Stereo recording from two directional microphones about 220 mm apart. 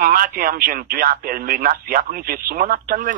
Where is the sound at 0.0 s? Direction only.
40° right (ahead or behind).